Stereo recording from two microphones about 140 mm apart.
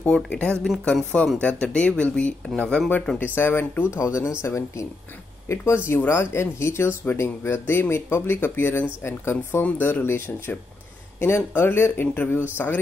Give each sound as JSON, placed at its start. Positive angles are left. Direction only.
{"t": 0.0, "sound": "speech", "side_deg": 10}
{"t": 5.9, "sound": "speech", "side_deg": 20}